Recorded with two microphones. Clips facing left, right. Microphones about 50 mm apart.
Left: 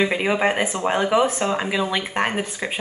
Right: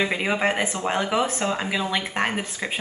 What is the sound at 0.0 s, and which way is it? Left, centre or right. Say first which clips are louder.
Speech: left 3 dB; centre.